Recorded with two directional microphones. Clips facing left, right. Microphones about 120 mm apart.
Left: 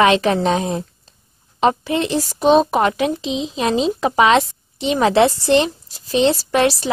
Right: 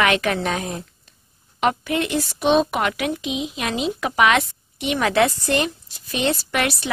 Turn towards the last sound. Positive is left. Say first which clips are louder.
# left 7 dB
turn(degrees=35)  # may be behind; listen again after turning